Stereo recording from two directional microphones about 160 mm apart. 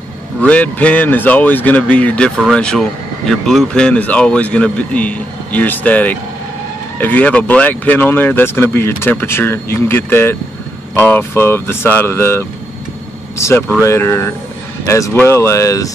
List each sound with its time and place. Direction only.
0.4 s speech: 10° left (ahead or behind)